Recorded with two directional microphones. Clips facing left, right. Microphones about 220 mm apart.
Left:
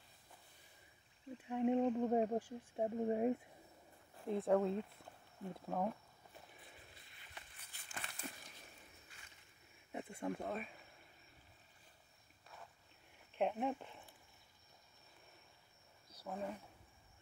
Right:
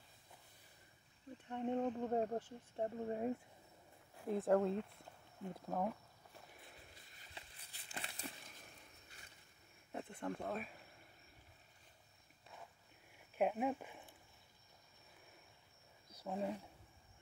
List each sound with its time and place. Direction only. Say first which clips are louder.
1.4 s speech: left 4 dB; 10° left (ahead or behind)
4.2 s speech: even; centre (ahead or behind)
7.9 s crumpling: right 1 dB; 30° right (ahead or behind)
9.9 s a sound: left 1 dB; 10° left (ahead or behind)
13.3 s speech: right 1 dB; 5° right (ahead or behind)
16.3 s speech: right 3 dB; 15° right (ahead or behind)